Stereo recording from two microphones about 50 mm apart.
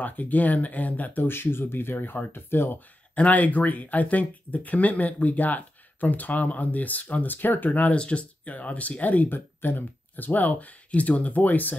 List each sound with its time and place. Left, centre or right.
0.0 s speech: left
3.2 s speech: left
7.3 s speech: left
7.9 s speech: left